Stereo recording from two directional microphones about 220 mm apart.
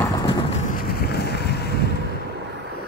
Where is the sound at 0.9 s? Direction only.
45° left (ahead or behind).